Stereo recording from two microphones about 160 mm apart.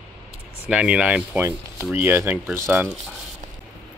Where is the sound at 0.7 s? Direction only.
5° right (ahead or behind).